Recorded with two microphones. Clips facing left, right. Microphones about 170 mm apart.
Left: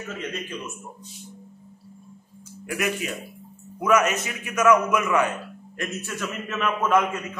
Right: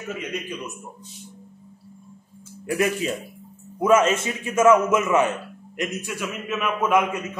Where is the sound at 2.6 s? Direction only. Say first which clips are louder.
Right 5 dB; 30° right (ahead or behind); by 7.2 s 10° right (ahead or behind).